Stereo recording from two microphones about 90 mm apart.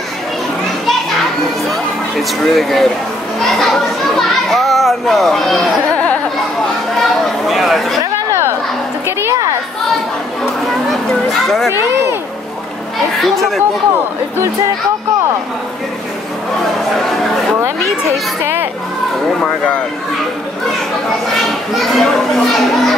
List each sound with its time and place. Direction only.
1.7 s a sound: centre (ahead or behind)
3.3 s a child's voice: centre (ahead or behind)
7.0 s chatter: centre (ahead or behind)
9.0 s a sound: 25° right (ahead or behind)
10.9 s children playing: centre (ahead or behind)
13.2 s a child's voice: centre (ahead or behind)
17.6 s speech: 30° right (ahead or behind)
21.4 s a child's voice: centre (ahead or behind)